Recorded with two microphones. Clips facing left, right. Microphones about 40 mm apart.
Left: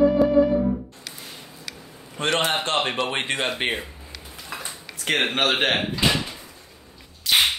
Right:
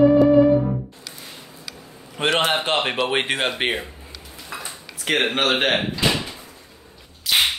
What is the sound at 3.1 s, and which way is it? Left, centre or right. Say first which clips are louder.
Speech: right 4 dB; right.